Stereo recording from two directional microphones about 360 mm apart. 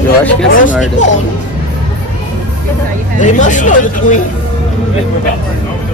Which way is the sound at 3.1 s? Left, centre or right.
Left.